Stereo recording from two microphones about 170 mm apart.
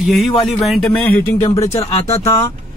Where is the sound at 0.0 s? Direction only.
Centre (ahead or behind).